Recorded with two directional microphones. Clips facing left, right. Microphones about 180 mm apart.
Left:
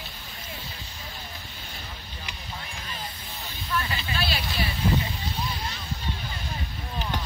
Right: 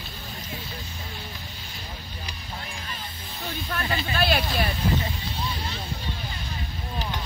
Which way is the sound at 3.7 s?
45° right (ahead or behind).